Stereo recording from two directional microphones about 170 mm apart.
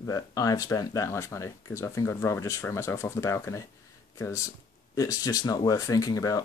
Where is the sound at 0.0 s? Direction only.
20° left (ahead or behind).